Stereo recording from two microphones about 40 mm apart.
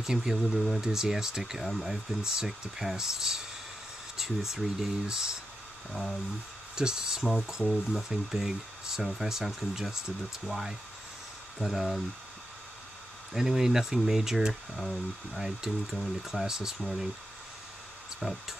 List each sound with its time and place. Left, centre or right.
0.0 s speech: centre
6.7 s speech: centre
13.3 s speech: centre
15.4 s speech: centre
18.2 s speech: centre